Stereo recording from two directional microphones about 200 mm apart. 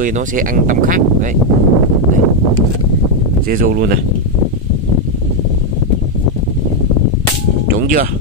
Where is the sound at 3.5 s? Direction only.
45° right (ahead or behind).